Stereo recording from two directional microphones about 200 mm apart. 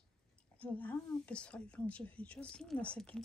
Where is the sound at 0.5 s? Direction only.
5° left (ahead or behind).